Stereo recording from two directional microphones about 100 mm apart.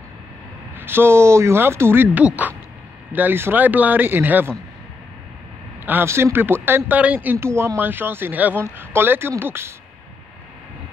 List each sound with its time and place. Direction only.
0.7 s speech: 20° right (ahead or behind)
5.9 s speech: 25° right (ahead or behind)